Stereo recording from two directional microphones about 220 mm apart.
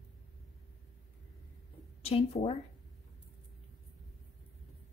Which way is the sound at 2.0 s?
25° left (ahead or behind).